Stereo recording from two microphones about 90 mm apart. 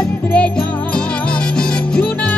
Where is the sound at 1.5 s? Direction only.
10° left (ahead or behind).